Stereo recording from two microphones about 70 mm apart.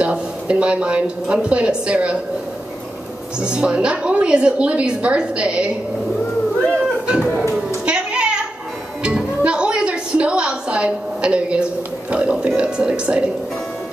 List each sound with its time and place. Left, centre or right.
0.0 s a woman's voice: centre
3.3 s a woman's voice: centre
7.8 s music: centre